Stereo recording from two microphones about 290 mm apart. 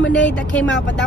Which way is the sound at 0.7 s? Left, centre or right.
Left.